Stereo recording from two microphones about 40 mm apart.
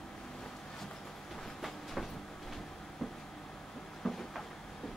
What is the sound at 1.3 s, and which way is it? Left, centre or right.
Train, centre.